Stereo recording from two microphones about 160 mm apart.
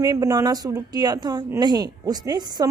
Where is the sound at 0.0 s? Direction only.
20° right (ahead or behind).